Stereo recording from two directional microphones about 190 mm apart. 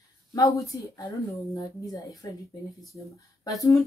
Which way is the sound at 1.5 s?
15° left (ahead or behind).